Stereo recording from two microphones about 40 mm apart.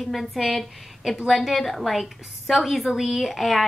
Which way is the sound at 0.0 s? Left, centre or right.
Centre.